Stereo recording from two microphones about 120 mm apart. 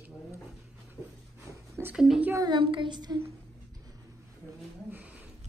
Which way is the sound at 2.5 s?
45° right (ahead or behind).